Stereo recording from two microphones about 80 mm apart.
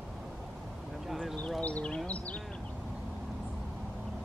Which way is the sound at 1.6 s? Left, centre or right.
Centre.